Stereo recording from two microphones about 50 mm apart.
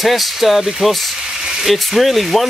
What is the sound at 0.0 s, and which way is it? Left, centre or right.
Speech, centre.